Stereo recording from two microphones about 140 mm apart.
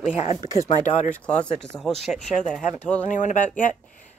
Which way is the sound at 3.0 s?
65° left (ahead or behind).